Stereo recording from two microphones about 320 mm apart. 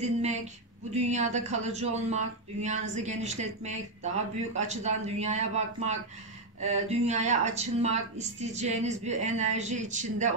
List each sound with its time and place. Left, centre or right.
0.0 s a sound: right
0.9 s a woman's voice: right
7.1 s a woman's voice: right